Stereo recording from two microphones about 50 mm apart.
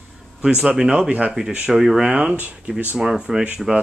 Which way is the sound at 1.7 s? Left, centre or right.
Centre.